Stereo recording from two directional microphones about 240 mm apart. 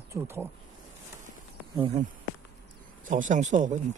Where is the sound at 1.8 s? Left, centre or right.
Right.